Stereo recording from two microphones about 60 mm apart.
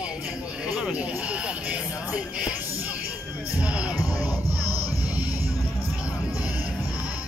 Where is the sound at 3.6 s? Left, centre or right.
Centre.